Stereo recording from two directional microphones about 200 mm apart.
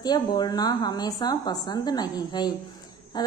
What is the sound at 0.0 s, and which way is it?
A woman's voice, 20° left (ahead or behind).